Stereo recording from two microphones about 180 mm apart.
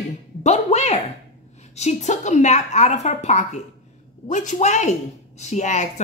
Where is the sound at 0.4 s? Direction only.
35° left (ahead or behind).